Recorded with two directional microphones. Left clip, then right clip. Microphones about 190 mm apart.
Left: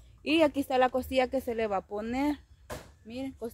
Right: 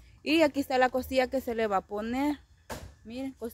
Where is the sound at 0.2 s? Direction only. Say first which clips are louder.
Even; 5° right (ahead or behind).